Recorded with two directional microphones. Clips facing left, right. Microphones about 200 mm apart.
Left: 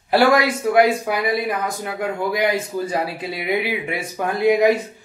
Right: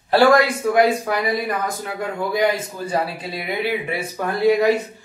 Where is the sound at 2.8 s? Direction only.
10° left (ahead or behind).